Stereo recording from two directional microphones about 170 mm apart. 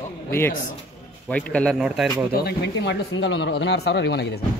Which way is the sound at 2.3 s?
75° left (ahead or behind).